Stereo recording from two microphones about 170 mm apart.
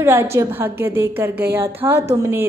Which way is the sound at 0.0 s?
15° right (ahead or behind).